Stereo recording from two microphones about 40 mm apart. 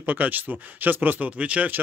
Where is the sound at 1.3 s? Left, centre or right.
Right.